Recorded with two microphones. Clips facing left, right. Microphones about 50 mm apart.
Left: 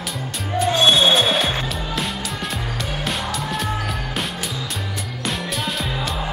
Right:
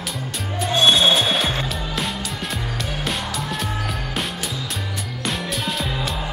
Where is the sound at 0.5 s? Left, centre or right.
Centre.